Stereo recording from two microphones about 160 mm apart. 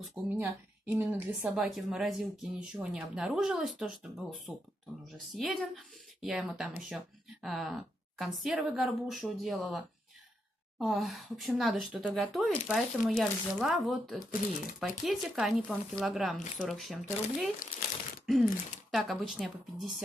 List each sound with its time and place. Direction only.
0.4 s a woman's voice: 15° right (ahead or behind)
1.6 s speech: centre (ahead or behind)